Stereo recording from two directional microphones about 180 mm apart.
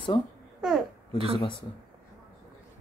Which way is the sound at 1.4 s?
30° left (ahead or behind).